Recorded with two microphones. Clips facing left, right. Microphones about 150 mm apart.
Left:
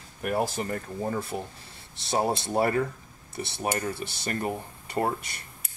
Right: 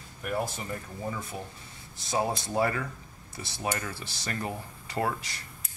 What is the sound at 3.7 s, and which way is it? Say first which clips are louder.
Speech: left 5 dB; 25° left (ahead or behind).